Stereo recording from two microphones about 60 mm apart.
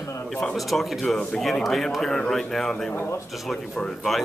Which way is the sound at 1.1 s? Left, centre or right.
Centre.